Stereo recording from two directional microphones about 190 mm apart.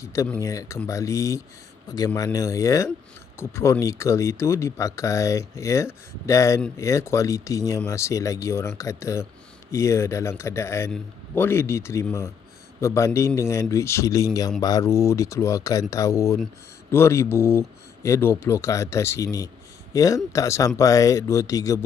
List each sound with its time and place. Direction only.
0.0 s speech: 15° left (ahead or behind)